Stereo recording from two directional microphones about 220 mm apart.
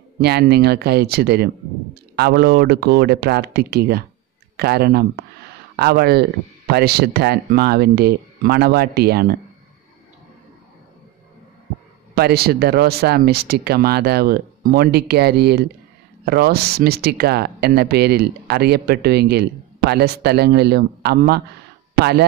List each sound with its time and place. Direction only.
0.2 s speech: 45° right (ahead or behind)
12.2 s speech: 45° right (ahead or behind)